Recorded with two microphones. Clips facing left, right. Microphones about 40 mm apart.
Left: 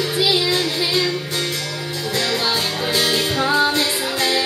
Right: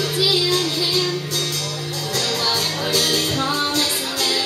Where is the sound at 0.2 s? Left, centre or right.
Left.